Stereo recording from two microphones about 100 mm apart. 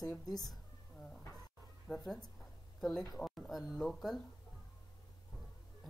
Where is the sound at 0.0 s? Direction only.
40° left (ahead or behind).